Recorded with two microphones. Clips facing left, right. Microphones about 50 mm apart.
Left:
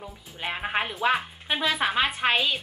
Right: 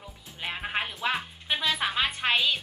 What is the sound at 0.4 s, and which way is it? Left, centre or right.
Speech, centre.